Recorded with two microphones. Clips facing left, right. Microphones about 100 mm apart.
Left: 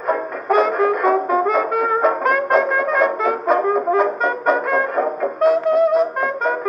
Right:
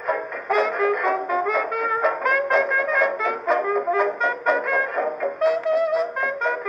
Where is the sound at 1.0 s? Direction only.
40° left (ahead or behind).